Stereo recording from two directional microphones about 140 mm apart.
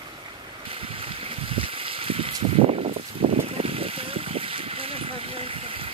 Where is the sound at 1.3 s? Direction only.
40° right (ahead or behind).